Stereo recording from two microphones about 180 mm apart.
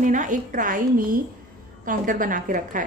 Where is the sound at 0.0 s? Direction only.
45° right (ahead or behind).